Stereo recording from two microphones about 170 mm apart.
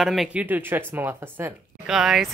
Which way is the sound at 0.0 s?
Centre (ahead or behind).